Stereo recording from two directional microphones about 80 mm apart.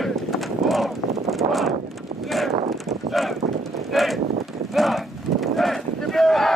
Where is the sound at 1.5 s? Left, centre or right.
Centre.